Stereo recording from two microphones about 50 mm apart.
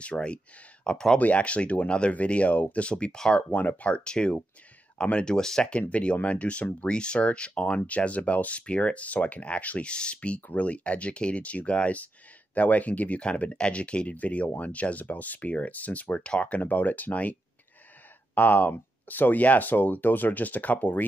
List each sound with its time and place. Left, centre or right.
0.0 s speech: left
0.8 s speech: centre
1.1 s speech: left
3.3 s speech: left